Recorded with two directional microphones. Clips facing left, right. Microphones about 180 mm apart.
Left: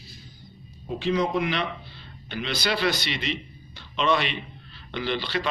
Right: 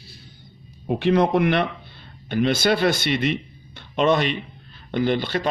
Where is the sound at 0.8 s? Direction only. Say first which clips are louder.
Right 6 dB; 65° right (ahead or behind).